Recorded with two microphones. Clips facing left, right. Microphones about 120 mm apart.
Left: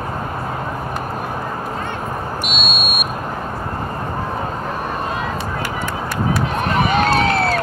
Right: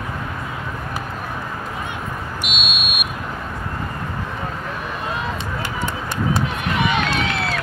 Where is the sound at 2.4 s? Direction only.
40° left (ahead or behind).